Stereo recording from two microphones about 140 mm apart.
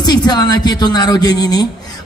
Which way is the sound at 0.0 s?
30° left (ahead or behind).